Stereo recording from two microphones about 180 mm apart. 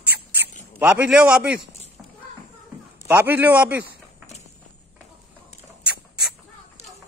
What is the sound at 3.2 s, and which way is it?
Speech, 10° right (ahead or behind).